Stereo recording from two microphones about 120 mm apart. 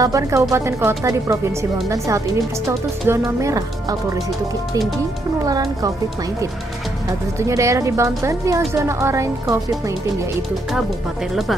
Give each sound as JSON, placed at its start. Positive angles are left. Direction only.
{"t": 0.0, "sound": "speech", "side_deg": -25}
{"t": 3.3, "sound": "speech", "side_deg": -25}
{"t": 5.5, "sound": "speech", "side_deg": -30}
{"t": 7.3, "sound": "speech", "side_deg": -25}